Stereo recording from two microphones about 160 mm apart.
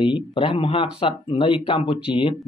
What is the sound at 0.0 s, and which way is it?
Speech, 30° left (ahead or behind).